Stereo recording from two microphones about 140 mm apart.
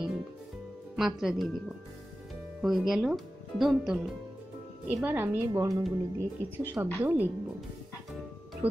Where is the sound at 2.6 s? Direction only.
Centre (ahead or behind); by 5.7 s 20° right (ahead or behind).